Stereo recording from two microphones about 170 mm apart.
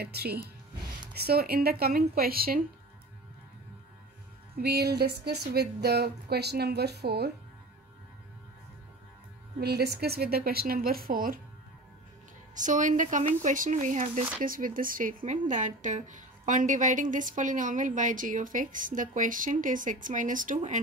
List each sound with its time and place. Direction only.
0.0 s speech: 70° right (ahead or behind)
4.6 s speech: 70° right (ahead or behind)
9.6 s speech: 70° right (ahead or behind)
12.5 s speech: 45° right (ahead or behind)